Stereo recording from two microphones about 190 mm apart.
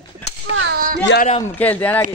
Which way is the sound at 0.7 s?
45° right (ahead or behind).